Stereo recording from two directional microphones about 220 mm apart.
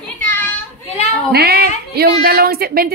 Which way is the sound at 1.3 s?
45° right (ahead or behind).